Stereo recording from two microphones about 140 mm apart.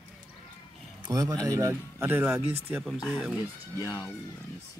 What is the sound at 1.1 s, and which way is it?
A man's voice, 25° right (ahead or behind).